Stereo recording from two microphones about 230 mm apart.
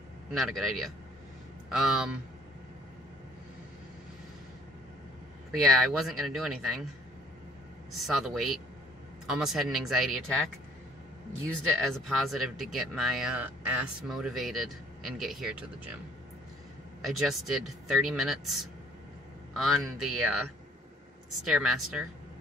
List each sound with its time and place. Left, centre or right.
0.3 s speech: centre
5.6 s speech: centre
7.9 s speech: centre
11.8 s speech: centre
17.0 s speech: centre
19.5 s speech: centre
21.5 s speech: centre